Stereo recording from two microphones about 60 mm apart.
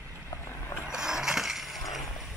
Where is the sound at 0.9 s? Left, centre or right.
Centre.